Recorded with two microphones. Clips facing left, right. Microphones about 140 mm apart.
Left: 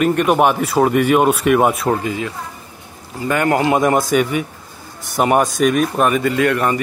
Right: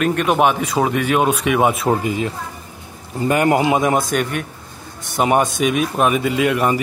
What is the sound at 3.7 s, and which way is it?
Speech, centre (ahead or behind).